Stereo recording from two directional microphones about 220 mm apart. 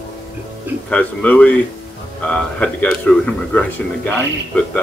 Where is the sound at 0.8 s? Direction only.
5° left (ahead or behind).